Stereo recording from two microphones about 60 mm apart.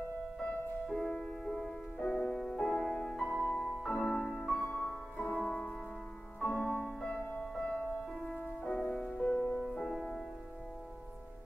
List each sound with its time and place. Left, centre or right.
0.9 s music: centre
2.2 s music: centre
8.0 s music: centre
8.9 s music: centre
9.2 s music: centre